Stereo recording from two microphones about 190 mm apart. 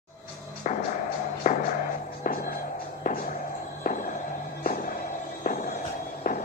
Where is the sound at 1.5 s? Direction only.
40° left (ahead or behind).